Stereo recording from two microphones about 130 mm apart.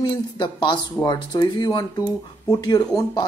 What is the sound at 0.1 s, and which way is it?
Speech, 40° left (ahead or behind).